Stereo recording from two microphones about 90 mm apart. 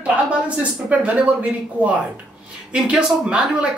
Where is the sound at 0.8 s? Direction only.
15° right (ahead or behind).